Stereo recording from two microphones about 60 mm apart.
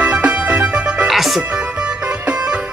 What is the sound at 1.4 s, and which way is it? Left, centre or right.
Music, centre.